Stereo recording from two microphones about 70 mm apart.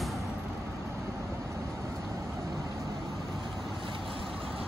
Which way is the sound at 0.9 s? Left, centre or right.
Right.